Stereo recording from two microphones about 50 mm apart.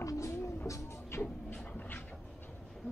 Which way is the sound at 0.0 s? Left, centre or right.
Left.